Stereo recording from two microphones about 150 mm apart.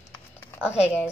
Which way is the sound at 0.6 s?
5° right (ahead or behind).